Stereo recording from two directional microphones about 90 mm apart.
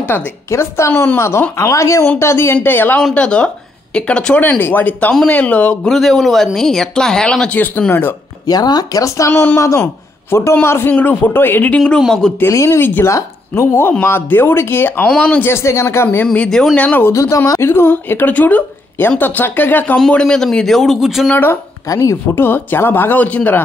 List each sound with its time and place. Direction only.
0.0 s speech: 25° left (ahead or behind)
3.2 s speech: 10° left (ahead or behind)
5.9 s speech: centre (ahead or behind); by 7.8 s 20° left (ahead or behind)
8.5 s speech: 45° left (ahead or behind); by 11.8 s 20° left (ahead or behind)
12.4 s speech: 35° left (ahead or behind)
12.8 s speech: 25° left (ahead or behind)
15.0 s speech: 15° left (ahead or behind)
15.5 s speech: 30° left (ahead or behind)
16.3 s speech: 5° left (ahead or behind)
17.1 s speech: 35° left (ahead or behind)
20.0 s speech: 10° left (ahead or behind)
21.3 s speech: 20° left (ahead or behind)
21.8 s speech: 35° left (ahead or behind)
22.3 s speech: 25° left (ahead or behind)